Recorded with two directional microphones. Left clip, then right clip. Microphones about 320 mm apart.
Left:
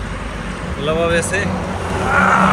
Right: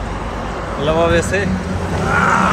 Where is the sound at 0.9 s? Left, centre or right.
Right.